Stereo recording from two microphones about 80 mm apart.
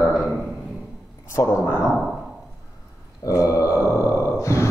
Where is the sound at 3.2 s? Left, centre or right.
Left.